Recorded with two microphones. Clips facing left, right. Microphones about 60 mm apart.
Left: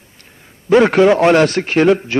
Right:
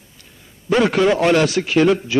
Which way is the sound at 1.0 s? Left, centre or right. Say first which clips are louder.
Left 5 dB; left.